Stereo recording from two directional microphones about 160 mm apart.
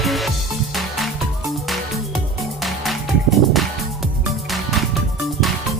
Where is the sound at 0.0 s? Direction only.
Centre (ahead or behind).